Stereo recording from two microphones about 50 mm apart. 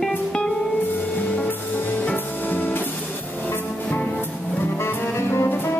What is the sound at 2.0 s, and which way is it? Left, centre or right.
Music, left.